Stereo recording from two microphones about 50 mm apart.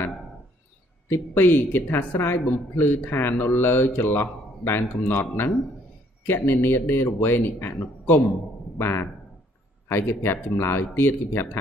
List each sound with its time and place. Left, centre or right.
1.1 s speech: left
8.7 s speech: left